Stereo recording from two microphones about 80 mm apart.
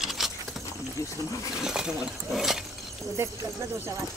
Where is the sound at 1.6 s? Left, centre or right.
Centre.